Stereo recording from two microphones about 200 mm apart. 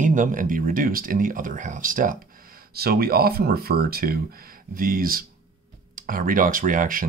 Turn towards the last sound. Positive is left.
turn(degrees=-45)  # may be behind; listen again after turning